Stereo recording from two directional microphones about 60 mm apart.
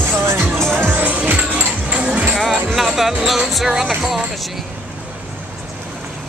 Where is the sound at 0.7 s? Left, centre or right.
Right.